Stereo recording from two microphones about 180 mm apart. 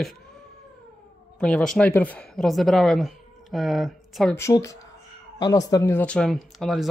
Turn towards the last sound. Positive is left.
turn(degrees=0)  # may be behind; listen again after turning